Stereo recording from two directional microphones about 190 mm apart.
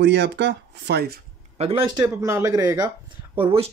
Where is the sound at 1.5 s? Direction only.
30° right (ahead or behind).